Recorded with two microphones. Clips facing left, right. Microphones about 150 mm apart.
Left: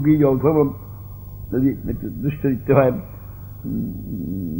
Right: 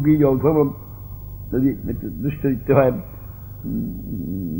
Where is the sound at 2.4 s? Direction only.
Centre (ahead or behind).